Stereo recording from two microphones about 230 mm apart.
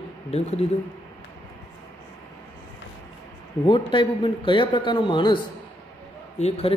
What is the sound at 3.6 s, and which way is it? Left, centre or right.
Speech, left.